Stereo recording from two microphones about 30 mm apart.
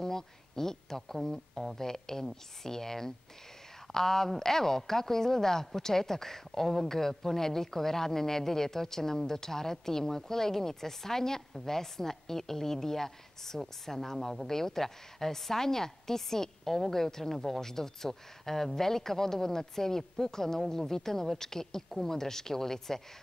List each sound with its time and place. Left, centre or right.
0.0 s a sound: centre
1.8 s speech: centre
14.1 s speech: centre
14.5 s speech: centre